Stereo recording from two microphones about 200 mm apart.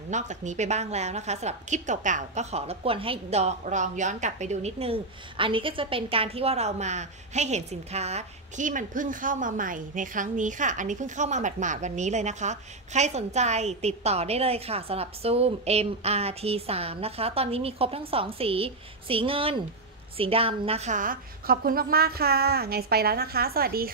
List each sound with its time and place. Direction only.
0.1 s a woman's voice: 35° right (ahead or behind)